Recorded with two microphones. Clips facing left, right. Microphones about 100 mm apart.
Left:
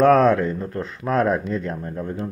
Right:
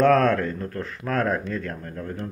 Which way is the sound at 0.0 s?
15° left (ahead or behind).